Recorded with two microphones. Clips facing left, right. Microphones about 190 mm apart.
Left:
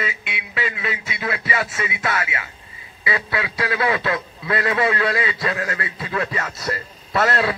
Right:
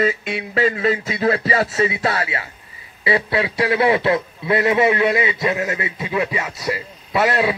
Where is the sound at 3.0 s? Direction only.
30° right (ahead or behind).